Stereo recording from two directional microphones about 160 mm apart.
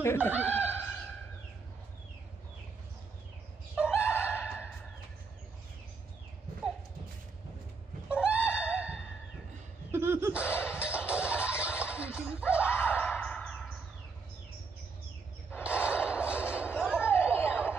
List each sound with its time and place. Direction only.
0.0 s speech: 15° left (ahead or behind)
0.3 s chuckle: 10° right (ahead or behind)
3.7 s chicken: 5° right (ahead or behind)
4.3 s gasp: 5° right (ahead or behind)
8.1 s neigh: 5° right (ahead or behind)
8.5 s a sound: 10° right (ahead or behind)
12.7 s a sound: 15° left (ahead or behind)
15.6 s a sound: 5° right (ahead or behind)
17.5 s snicker: 10° right (ahead or behind)